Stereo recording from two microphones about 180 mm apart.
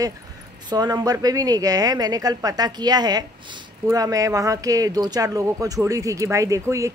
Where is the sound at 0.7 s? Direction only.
20° right (ahead or behind).